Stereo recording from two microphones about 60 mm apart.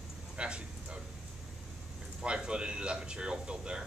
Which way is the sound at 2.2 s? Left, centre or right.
Centre.